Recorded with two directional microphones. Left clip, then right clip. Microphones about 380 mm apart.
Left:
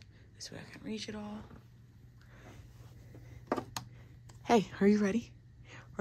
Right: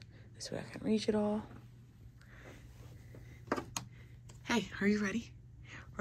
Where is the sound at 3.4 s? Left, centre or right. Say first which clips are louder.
Left 2 dB; left.